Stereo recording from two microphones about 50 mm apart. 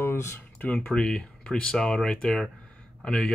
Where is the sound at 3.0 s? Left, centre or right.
Left.